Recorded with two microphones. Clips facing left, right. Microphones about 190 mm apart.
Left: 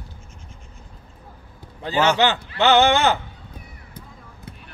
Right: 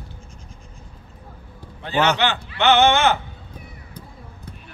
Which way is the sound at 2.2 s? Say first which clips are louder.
Left 3 dB; 40° left (ahead or behind).